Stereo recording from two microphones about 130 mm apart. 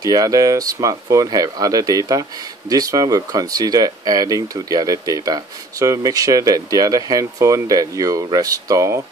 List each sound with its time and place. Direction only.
0.0 s speech: 30° right (ahead or behind)